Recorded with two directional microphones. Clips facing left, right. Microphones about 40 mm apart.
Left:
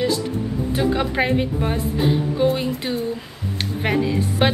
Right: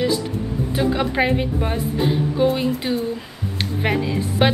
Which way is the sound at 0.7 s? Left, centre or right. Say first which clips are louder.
Right 1 dB; centre.